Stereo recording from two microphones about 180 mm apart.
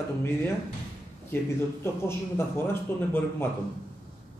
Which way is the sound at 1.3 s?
15° left (ahead or behind).